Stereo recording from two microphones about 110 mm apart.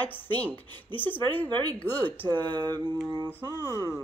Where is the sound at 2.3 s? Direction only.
45° right (ahead or behind).